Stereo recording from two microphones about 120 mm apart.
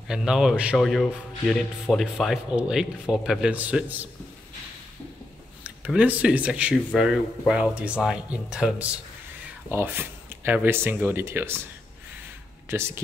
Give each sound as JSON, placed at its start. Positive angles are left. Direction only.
{"t": 0.1, "sound": "speech", "side_deg": -5}
{"t": 1.5, "sound": "speech", "side_deg": 5}
{"t": 5.9, "sound": "speech", "side_deg": -10}
{"t": 9.7, "sound": "speech", "side_deg": -20}
{"t": 12.6, "sound": "speech", "side_deg": -20}